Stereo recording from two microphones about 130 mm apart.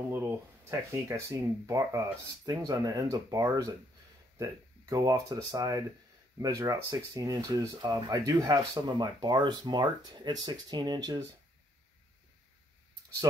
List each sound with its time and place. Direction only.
0.1 s speech: 20° right (ahead or behind)